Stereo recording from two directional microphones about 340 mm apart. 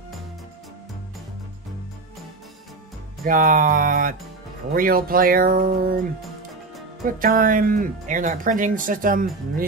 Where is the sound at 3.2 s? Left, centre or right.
Right.